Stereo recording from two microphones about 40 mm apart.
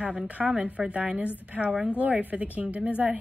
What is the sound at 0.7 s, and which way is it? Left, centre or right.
Speech, right.